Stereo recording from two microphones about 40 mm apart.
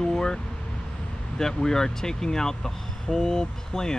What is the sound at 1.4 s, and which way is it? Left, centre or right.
Speech, centre.